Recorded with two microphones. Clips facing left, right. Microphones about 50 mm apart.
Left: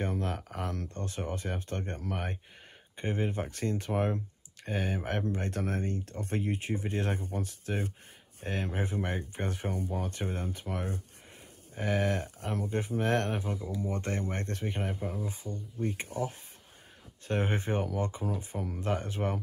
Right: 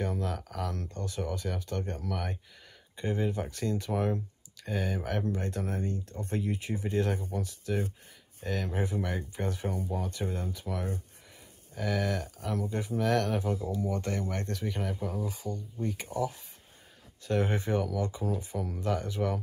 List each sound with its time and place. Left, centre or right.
0.0 s speech: left